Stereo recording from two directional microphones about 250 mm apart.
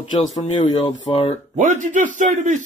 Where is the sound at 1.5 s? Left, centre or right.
Right.